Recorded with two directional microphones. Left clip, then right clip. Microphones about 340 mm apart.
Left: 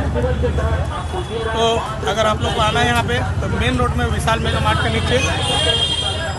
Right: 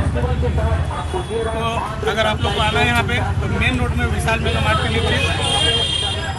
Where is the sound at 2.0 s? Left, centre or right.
Centre.